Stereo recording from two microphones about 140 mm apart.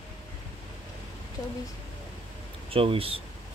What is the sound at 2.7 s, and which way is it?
Speech, 40° right (ahead or behind).